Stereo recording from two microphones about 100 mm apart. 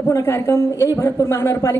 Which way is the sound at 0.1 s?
25° left (ahead or behind).